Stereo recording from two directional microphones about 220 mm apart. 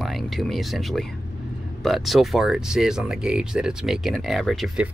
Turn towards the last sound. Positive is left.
turn(degrees=0)  # may be behind; listen again after turning